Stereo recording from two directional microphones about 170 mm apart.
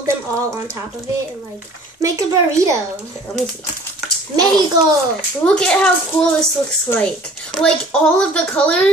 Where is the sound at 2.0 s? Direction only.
20° right (ahead or behind).